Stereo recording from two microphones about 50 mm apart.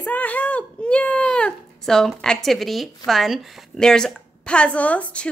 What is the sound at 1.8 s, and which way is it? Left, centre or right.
A woman's voice, centre.